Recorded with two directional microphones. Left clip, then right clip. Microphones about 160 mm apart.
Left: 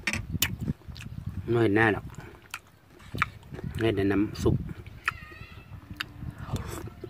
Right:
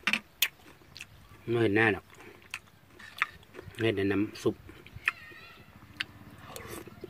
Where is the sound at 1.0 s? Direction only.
15° left (ahead or behind).